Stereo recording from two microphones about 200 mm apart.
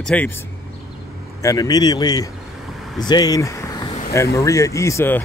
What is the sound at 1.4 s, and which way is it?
Speech, 15° left (ahead or behind).